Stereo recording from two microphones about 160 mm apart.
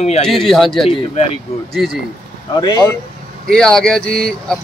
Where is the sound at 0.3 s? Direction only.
Centre (ahead or behind).